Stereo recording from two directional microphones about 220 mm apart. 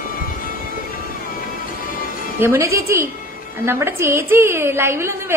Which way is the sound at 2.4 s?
10° right (ahead or behind).